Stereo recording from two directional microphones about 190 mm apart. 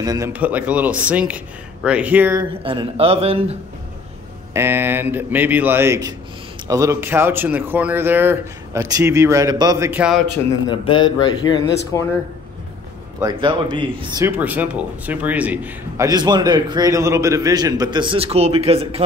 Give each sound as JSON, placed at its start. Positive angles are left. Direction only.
{"t": 0.0, "sound": "a man's voice", "side_deg": -20}
{"t": 0.3, "sound": "speech", "side_deg": -10}
{"t": 2.6, "sound": "a man's voice", "side_deg": -25}
{"t": 4.6, "sound": "speech", "side_deg": -10}
{"t": 11.4, "sound": "speech", "side_deg": 20}
{"t": 13.2, "sound": "speech", "side_deg": -25}
{"t": 16.1, "sound": "a man's voice", "side_deg": -20}